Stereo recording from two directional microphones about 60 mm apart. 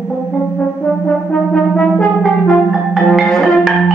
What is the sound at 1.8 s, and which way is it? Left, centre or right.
Brass instrument, centre.